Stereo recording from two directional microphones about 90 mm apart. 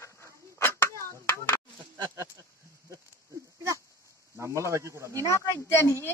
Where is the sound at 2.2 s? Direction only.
35° right (ahead or behind).